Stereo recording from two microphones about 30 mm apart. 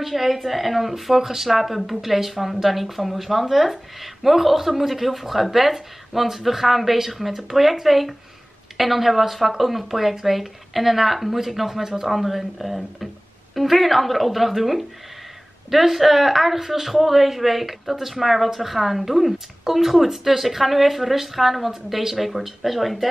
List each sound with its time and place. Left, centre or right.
0.0 s speech: centre
11.8 s speech: centre
12.1 s speech: centre